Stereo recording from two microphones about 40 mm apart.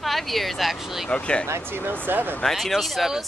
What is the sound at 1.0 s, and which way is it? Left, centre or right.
Speech, left.